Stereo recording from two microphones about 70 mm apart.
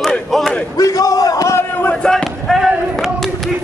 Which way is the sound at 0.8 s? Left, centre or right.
Left.